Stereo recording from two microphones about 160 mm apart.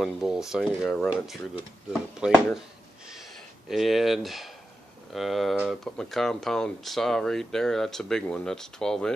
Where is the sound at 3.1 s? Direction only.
Centre (ahead or behind).